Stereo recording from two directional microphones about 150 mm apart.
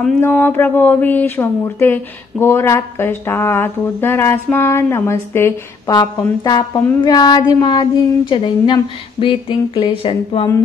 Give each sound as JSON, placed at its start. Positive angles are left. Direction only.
{"t": 0.2, "sound": "speech", "side_deg": 15}
{"t": 5.9, "sound": "a sound", "side_deg": 25}
{"t": 9.2, "sound": "speech", "side_deg": 35}